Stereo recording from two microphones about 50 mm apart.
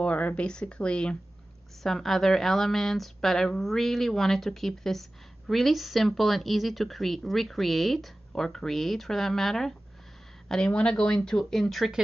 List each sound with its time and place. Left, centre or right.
0.0 s a sound: left
0.5 s speech: centre
1.8 s a woman's voice: centre